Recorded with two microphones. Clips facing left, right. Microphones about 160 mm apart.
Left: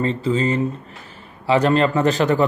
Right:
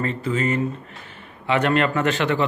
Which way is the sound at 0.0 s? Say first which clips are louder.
Left 4 dB; 30° left (ahead or behind).